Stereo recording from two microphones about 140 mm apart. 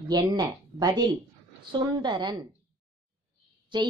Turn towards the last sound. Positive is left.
turn(degrees=-35)  # may be behind; listen again after turning